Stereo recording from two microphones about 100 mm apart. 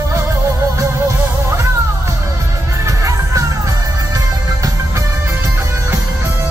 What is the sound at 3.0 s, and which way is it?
Music, 35° right (ahead or behind).